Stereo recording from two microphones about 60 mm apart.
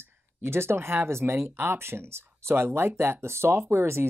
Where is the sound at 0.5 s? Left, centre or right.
Right.